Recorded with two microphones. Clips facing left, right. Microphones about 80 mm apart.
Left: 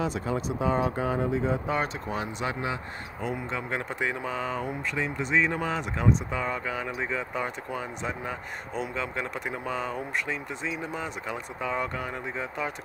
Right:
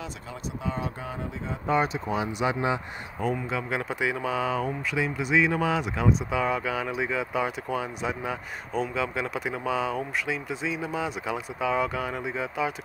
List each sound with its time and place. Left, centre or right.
0.6 s speech: left
1.7 s speech: centre